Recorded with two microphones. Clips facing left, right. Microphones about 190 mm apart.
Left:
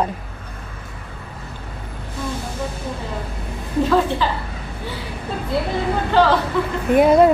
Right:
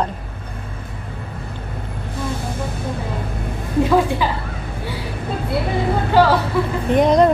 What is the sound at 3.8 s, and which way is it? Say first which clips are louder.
Speech: right 1 dB; 10° right (ahead or behind).